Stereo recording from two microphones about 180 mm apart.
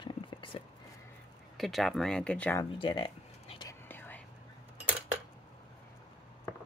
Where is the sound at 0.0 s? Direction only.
30° left (ahead or behind).